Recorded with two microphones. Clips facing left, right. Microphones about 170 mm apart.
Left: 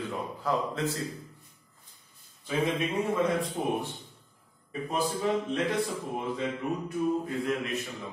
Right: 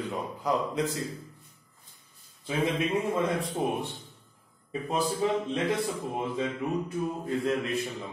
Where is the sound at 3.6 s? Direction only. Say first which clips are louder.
Right 3 dB; 20° right (ahead or behind).